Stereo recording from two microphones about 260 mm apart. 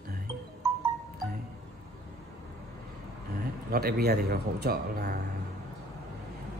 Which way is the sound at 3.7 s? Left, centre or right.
Right.